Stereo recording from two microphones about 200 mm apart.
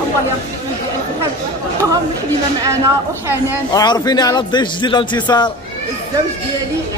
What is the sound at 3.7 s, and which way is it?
Speech, 20° left (ahead or behind).